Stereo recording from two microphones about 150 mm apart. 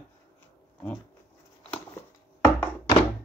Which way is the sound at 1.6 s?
10° left (ahead or behind).